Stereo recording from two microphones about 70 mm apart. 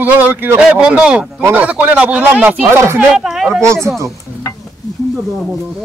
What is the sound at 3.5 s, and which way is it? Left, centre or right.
Speech, right.